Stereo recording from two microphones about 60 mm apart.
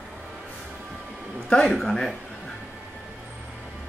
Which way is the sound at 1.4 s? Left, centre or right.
Centre.